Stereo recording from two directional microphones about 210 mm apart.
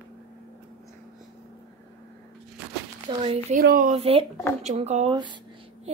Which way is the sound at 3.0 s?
25° right (ahead or behind).